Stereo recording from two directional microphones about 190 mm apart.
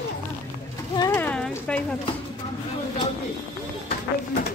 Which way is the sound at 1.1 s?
5° left (ahead or behind).